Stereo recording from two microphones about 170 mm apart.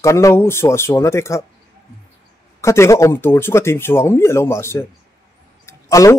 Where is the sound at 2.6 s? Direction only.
15° left (ahead or behind).